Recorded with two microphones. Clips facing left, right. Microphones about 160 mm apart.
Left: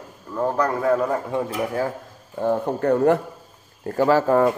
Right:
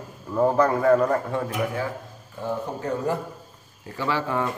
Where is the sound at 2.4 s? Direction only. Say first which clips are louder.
Left 8 dB; 60° left (ahead or behind).